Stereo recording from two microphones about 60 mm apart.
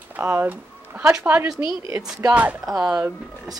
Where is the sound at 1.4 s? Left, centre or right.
Right.